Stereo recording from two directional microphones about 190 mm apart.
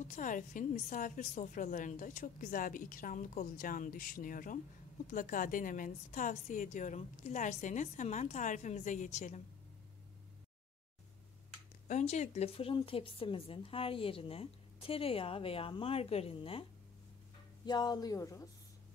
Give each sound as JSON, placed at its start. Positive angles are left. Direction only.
{"t": 0.1, "sound": "a woman's voice", "side_deg": 45}
{"t": 11.9, "sound": "a woman's voice", "side_deg": 35}
{"t": 17.6, "sound": "a woman's voice", "side_deg": 20}